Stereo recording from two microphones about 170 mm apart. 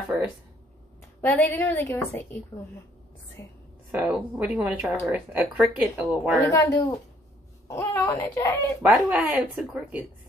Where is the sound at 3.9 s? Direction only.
5° right (ahead or behind).